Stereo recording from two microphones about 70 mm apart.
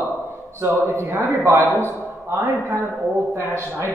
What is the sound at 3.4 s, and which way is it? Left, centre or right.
Speech, right.